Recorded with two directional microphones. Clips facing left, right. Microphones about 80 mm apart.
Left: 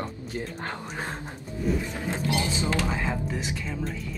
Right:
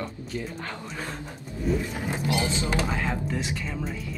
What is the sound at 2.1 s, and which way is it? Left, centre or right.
Speech, centre.